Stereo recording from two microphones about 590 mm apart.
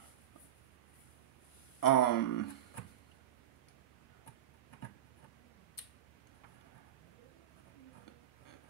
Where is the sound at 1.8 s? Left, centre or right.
Left.